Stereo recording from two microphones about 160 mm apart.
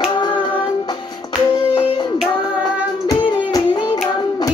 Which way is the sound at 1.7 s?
30° left (ahead or behind).